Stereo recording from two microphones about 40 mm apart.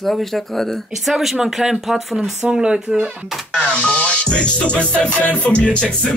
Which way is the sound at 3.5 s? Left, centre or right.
Left.